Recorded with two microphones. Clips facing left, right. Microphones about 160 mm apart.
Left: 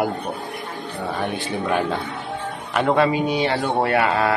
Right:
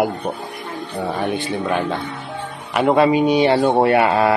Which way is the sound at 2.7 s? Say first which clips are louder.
Right 4 dB; 15° right (ahead or behind).